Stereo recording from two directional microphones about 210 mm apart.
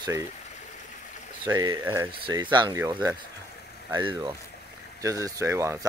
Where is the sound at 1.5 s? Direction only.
15° right (ahead or behind).